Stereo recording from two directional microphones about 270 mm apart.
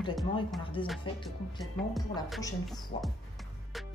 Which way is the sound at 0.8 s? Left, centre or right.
Centre.